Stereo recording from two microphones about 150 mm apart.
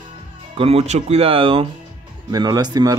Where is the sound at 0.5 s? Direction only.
40° right (ahead or behind).